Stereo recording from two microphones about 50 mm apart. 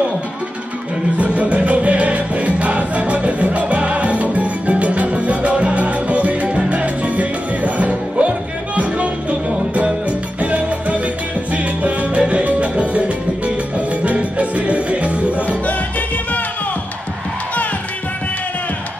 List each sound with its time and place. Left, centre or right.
1.1 s music: right
10.4 s salsa music: right
13.7 s music: right